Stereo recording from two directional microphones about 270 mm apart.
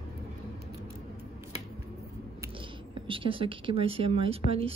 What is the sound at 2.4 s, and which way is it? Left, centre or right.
Speech, centre.